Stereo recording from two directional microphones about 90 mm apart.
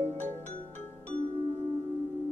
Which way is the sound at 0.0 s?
25° left (ahead or behind).